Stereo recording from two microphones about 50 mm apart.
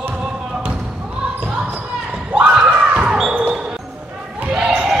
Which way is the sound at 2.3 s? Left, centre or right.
Centre.